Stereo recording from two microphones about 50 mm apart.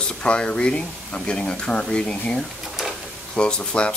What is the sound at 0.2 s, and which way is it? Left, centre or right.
Speech, left.